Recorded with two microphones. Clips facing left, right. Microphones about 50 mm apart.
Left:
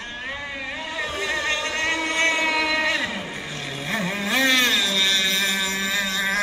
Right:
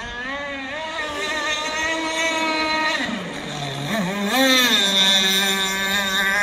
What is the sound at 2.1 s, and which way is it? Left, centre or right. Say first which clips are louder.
Vehicle: left 1 dB; left.